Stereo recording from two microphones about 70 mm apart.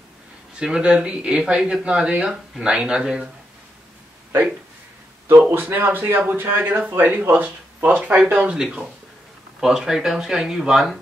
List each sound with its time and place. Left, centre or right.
0.6 s speech: centre
5.5 s speech: right
9.6 s speech: centre